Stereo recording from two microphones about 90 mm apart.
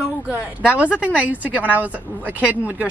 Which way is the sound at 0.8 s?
15° right (ahead or behind).